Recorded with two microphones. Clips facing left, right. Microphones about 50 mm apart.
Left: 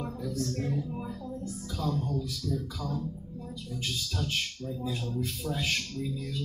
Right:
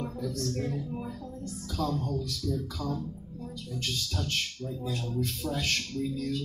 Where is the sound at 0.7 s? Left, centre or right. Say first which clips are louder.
Left 1 dB; centre.